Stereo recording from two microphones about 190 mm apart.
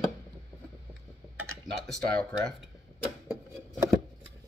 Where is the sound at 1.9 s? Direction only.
5° left (ahead or behind).